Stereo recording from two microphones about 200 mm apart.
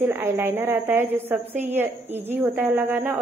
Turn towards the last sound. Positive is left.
turn(degrees=-10)  # may be behind; listen again after turning